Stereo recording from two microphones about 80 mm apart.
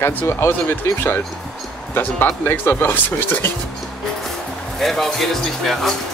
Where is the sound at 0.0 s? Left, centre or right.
Left.